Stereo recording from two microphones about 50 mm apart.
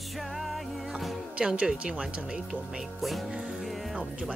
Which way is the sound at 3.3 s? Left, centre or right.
Centre.